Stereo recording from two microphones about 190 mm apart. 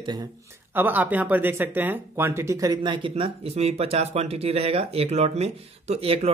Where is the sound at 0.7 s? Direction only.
10° right (ahead or behind).